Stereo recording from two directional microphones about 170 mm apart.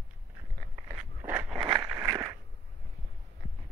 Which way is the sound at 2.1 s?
20° right (ahead or behind).